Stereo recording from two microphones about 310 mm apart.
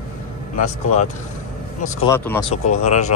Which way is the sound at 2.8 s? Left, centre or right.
Left.